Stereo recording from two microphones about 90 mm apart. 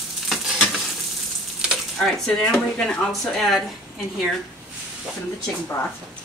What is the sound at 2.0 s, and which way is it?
Speech, 5° left (ahead or behind).